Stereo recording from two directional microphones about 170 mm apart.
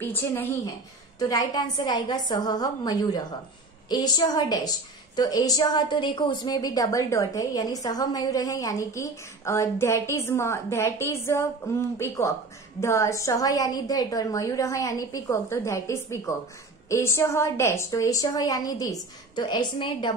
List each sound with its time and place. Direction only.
0.0 s a woman's voice: 15° left (ahead or behind)